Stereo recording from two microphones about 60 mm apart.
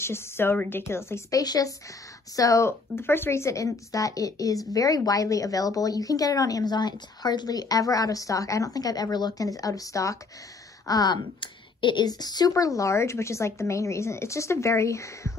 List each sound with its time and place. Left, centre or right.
0.0 s speech: left
1.3 s speech: left
2.3 s speech: left
2.6 s speech: left
3.9 s speech: left
4.7 s speech: left
7.4 s speech: left
10.9 s speech: left
12.1 s speech: left